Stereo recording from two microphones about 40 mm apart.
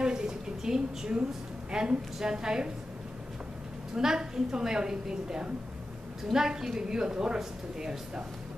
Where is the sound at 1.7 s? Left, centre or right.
Right.